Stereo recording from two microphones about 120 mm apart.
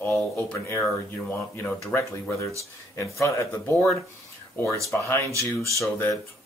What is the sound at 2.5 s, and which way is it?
Speech, 25° left (ahead or behind).